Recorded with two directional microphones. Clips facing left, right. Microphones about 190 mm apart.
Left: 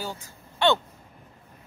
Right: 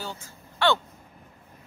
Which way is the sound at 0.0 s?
15° left (ahead or behind).